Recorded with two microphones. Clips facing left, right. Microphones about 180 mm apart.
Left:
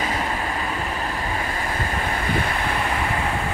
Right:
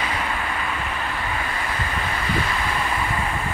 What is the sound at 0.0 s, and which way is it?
Vehicle, 40° left (ahead or behind).